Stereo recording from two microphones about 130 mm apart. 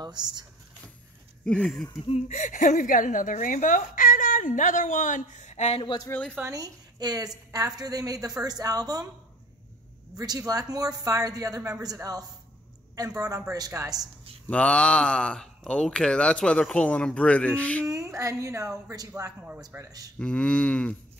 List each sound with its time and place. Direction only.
0.0 s speech: 35° right (ahead or behind)
1.4 s speech: 5° left (ahead or behind)
2.0 s a woman's voice: 50° left (ahead or behind)
6.1 s speech: 15° left (ahead or behind)
6.5 s a woman's voice: 30° right (ahead or behind)
10.1 s speech: 30° right (ahead or behind)
13.5 s speech: 25° right (ahead or behind)
14.5 s speech: 10° left (ahead or behind)
17.8 s speech: 25° right (ahead or behind)
20.2 s speech: 5° left (ahead or behind)